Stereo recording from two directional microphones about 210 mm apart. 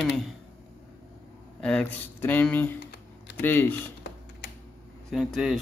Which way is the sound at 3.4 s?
10° left (ahead or behind).